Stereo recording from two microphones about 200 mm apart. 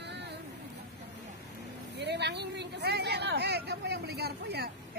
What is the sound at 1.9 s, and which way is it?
A man's voice, 55° right (ahead or behind).